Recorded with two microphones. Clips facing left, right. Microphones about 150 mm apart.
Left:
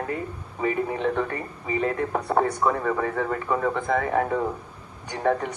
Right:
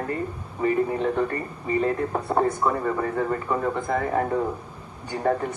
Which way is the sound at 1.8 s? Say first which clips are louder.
Left 2 dB; 5° right (ahead or behind).